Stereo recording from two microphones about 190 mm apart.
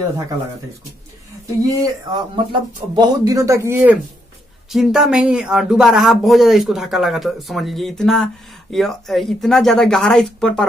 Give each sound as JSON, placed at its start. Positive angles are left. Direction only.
{"t": 1.6, "sound": "speech", "side_deg": -20}